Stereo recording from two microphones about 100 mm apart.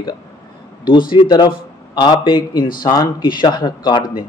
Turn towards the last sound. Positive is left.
turn(degrees=50)  # may be behind; listen again after turning